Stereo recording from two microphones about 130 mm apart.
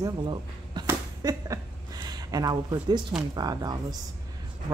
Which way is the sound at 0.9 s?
25° right (ahead or behind).